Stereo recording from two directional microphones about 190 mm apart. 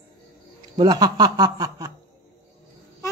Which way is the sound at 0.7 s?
20° right (ahead or behind).